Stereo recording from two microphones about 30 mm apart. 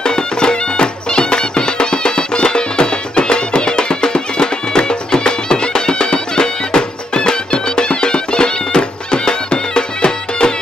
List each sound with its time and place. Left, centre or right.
0.0 s music: left